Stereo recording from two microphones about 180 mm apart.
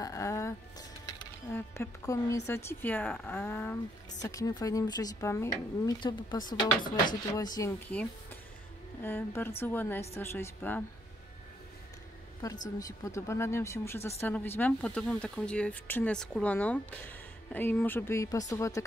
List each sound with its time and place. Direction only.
0.0 s speech: 20° left (ahead or behind)
7.9 s speech: 5° left (ahead or behind)
12.6 s speech: 20° left (ahead or behind)